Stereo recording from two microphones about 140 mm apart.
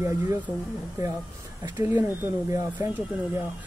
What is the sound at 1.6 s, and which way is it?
Speech, 15° right (ahead or behind).